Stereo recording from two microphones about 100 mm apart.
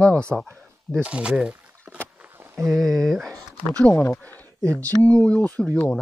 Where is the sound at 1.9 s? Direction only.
15° right (ahead or behind).